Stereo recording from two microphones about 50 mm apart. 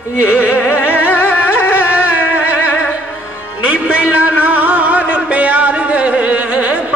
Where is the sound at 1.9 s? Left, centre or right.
Right.